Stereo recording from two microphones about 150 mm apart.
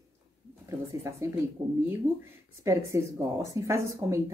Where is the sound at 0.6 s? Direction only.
20° right (ahead or behind).